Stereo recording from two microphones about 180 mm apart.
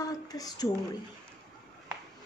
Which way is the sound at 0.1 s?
20° left (ahead or behind).